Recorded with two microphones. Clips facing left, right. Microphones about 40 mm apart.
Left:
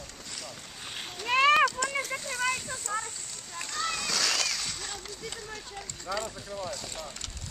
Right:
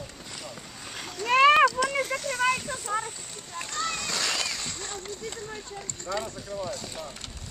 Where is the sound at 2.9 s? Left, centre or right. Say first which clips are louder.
Right 4 dB; centre.